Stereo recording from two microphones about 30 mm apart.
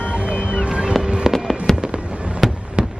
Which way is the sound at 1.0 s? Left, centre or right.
Right.